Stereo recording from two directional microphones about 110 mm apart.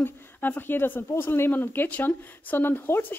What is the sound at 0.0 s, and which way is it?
A woman's voice, 20° left (ahead or behind).